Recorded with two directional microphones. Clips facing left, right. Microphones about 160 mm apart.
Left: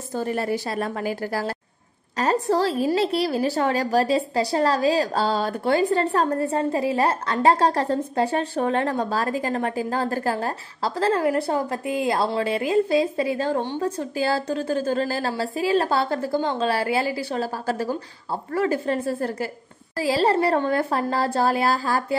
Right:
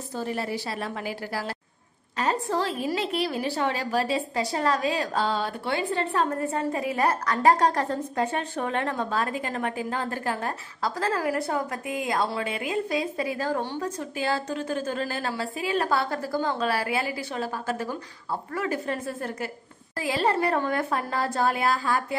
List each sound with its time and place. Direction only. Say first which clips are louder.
0.1 s a woman's voice: left 5 dB; 50° left (ahead or behind)